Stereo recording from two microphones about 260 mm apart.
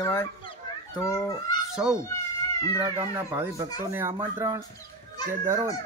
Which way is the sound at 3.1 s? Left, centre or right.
Centre.